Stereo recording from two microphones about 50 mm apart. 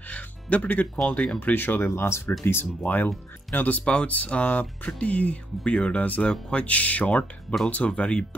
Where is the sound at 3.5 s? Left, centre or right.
Left.